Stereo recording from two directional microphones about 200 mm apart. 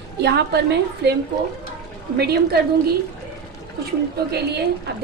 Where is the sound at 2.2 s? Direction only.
50° right (ahead or behind).